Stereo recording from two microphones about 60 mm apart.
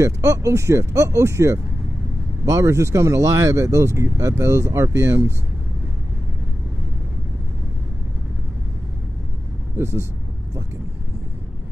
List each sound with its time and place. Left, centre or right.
0.0 s speech: right
9.8 s speech: right